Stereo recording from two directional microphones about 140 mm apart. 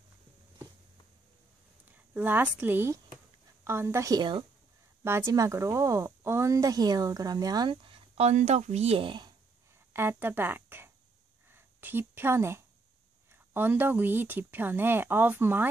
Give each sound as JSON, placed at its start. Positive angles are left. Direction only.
{"t": 1.9, "sound": "a woman's voice", "side_deg": -15}
{"t": 5.0, "sound": "speech", "side_deg": -20}
{"t": 9.9, "sound": "speech", "side_deg": -15}
{"t": 11.4, "sound": "a sound", "side_deg": -15}
{"t": 13.3, "sound": "speech", "side_deg": -15}